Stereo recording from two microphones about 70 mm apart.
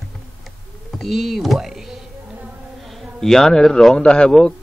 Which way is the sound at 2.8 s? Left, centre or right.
Centre.